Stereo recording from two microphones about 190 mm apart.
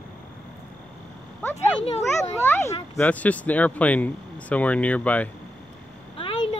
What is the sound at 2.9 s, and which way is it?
Speech, 10° left (ahead or behind).